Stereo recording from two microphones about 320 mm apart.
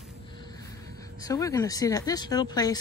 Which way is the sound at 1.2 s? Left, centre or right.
Centre.